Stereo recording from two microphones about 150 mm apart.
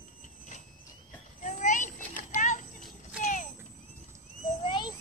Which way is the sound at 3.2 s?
55° left (ahead or behind).